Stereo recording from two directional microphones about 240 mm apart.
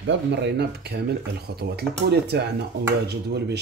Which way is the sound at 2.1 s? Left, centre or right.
Right.